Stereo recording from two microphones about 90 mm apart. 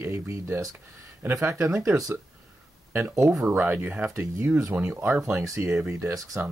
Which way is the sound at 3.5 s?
25° right (ahead or behind).